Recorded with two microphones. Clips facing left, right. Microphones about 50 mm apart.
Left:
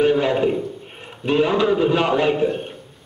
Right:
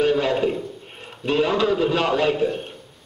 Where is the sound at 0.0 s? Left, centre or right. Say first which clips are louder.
Left 2 dB; centre.